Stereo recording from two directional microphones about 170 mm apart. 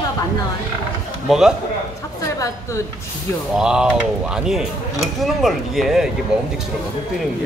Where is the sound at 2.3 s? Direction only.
20° left (ahead or behind).